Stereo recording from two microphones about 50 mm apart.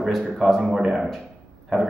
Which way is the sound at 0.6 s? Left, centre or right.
Centre.